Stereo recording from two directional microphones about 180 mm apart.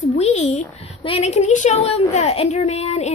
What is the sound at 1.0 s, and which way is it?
A woman's voice, 35° left (ahead or behind).